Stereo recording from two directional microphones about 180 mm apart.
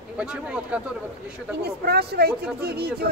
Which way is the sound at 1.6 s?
60° right (ahead or behind).